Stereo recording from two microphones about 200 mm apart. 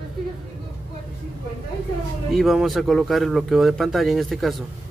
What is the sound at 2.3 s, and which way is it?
Speech, centre (ahead or behind).